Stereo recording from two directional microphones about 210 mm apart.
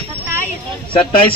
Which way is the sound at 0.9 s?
25° left (ahead or behind).